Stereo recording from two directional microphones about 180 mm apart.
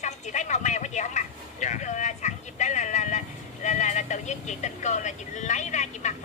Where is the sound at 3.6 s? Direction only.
40° left (ahead or behind).